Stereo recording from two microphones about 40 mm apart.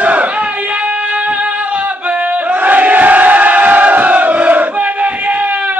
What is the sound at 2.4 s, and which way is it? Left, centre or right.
Crowd, right.